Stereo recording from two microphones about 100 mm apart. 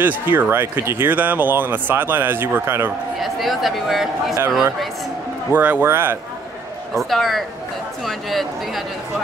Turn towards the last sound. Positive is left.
turn(degrees=0)  # may be behind; listen again after turning